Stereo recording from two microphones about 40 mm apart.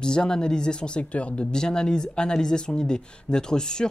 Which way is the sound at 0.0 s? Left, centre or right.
Centre.